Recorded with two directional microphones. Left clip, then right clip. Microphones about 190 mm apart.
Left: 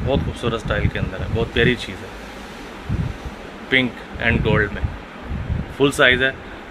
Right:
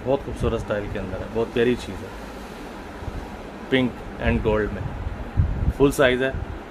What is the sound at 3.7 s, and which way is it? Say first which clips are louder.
Speech: left 4 dB; 5° right (ahead or behind).